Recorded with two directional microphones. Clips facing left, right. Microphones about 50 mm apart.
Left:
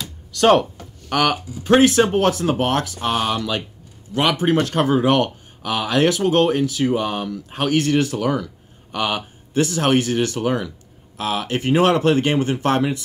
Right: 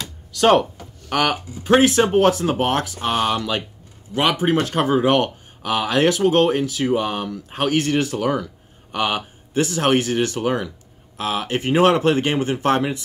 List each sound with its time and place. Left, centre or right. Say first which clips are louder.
0.3 s speech: left 1 dB; centre
1.9 s speech: right 1 dB; right
6.9 s speech: even; centre